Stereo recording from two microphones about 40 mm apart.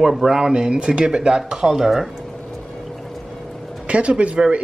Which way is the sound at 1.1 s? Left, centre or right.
Centre.